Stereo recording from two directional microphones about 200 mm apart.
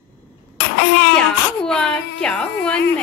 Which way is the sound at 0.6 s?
60° left (ahead or behind).